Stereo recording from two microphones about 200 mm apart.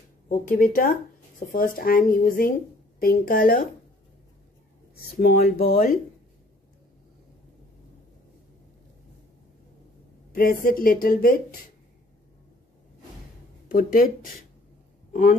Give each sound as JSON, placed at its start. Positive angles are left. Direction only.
{"t": 0.3, "sound": "a woman's voice", "side_deg": 45}
{"t": 5.2, "sound": "a woman's voice", "side_deg": 45}
{"t": 10.3, "sound": "a woman's voice", "side_deg": 45}
{"t": 13.7, "sound": "a woman's voice", "side_deg": 45}